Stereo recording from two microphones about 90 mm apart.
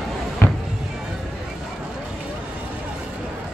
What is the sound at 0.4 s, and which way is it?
Music, 25° left (ahead or behind).